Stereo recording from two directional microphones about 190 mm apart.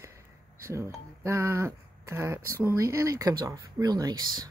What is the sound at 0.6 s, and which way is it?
Speech, 15° right (ahead or behind).